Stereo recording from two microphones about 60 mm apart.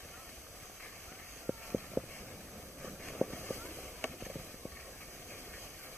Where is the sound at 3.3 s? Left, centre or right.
Left.